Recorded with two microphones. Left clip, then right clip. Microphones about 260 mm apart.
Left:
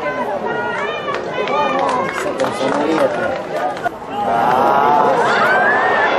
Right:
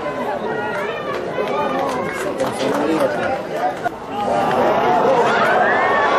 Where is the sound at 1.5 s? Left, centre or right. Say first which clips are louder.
Left 6 dB; centre.